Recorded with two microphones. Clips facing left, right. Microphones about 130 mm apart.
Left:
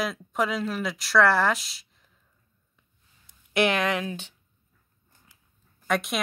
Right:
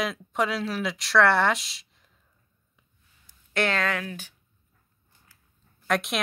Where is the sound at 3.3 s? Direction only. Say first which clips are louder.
Left 3 dB; 15° left (ahead or behind).